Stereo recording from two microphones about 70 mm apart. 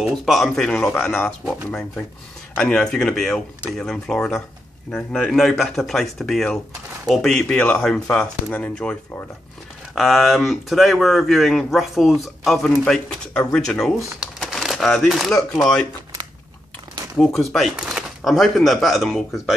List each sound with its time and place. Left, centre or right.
0.1 s speech: centre
0.7 s speech: centre
9.9 s speech: centre
14.5 s a sound: centre
17.2 s speech: centre